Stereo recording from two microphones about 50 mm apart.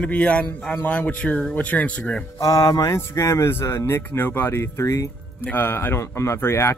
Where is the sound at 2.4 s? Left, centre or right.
Left.